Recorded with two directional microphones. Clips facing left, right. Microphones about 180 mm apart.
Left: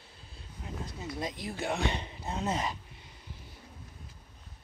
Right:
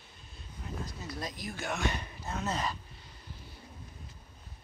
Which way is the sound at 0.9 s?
20° left (ahead or behind).